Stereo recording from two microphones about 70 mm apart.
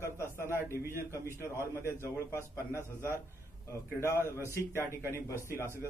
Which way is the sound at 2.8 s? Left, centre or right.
Left.